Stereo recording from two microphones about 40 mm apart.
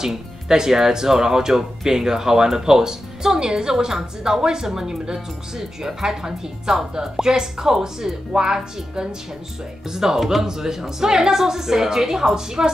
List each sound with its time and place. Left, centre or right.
0.0 s speech: centre